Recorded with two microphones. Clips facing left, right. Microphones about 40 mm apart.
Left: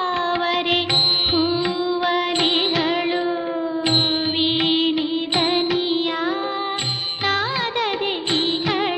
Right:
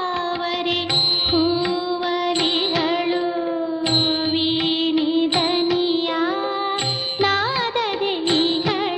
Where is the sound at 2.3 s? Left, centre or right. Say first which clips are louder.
Left 1 dB; left.